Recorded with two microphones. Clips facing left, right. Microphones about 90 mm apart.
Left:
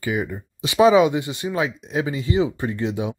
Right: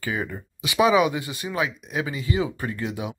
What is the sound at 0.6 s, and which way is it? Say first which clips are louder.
Speech: left 4 dB; 30° left (ahead or behind).